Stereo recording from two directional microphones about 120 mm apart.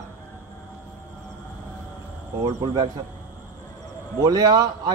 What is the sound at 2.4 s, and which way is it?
Speech, 30° right (ahead or behind).